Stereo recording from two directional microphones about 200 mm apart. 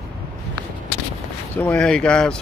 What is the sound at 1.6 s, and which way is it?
Speech, 5° left (ahead or behind).